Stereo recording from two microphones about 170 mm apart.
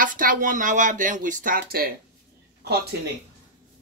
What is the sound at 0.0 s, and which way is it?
Speech, 50° right (ahead or behind).